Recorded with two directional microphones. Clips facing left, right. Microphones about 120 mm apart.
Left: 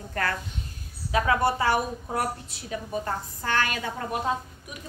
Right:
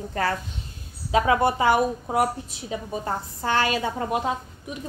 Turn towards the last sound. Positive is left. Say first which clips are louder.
# right 3 dB
turn(degrees=-20)  # may be behind; listen again after turning